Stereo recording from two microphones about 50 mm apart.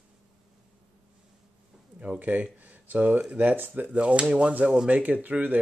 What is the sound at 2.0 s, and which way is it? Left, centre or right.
Speech, right.